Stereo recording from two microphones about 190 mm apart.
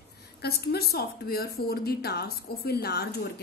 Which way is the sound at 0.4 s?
55° left (ahead or behind).